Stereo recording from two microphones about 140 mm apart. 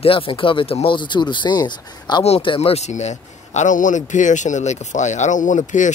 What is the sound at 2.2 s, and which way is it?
Speech, 40° left (ahead or behind).